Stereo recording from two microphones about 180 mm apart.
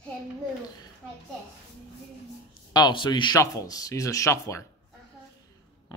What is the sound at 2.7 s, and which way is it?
Speech, 25° left (ahead or behind).